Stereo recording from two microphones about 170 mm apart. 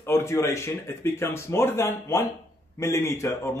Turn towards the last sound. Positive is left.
turn(degrees=15)  # may be behind; listen again after turning